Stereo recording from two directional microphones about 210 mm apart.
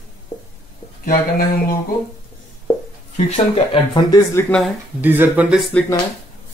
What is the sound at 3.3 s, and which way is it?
Speech, 25° left (ahead or behind).